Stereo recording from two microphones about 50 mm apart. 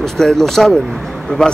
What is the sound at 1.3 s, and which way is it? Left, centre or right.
Speech, left.